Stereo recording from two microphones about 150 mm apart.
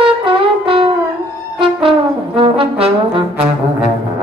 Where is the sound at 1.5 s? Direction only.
35° right (ahead or behind).